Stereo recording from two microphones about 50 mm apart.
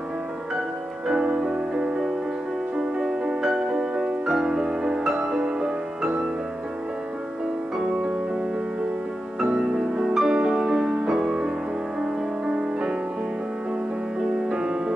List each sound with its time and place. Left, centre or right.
1.0 s music: centre
7.8 s music: centre
9.4 s music: centre
14.5 s music: centre